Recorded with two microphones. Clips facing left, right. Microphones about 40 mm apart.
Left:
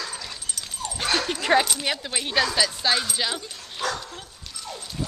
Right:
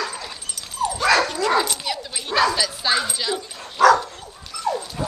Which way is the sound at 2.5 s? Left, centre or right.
Centre.